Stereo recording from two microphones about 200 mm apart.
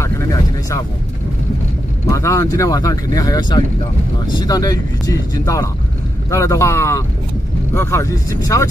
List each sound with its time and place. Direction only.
0.0 s vehicle: 15° left (ahead or behind)
2.0 s speech: 15° left (ahead or behind)